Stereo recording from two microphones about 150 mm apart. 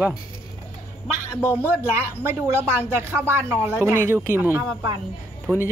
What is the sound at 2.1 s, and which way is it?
Speech, 15° right (ahead or behind).